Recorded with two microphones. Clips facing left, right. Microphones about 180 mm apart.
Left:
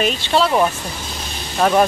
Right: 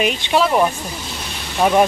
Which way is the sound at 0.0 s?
10° right (ahead or behind).